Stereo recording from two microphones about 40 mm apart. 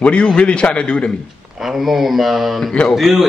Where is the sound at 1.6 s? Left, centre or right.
Centre.